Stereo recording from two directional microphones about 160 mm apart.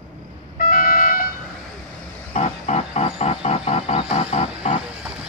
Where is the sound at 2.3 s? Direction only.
40° left (ahead or behind).